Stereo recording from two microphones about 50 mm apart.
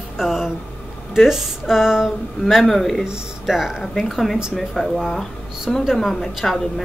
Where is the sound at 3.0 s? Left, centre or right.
Centre.